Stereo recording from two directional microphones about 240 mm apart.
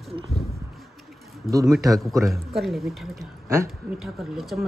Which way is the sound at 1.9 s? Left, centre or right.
Centre.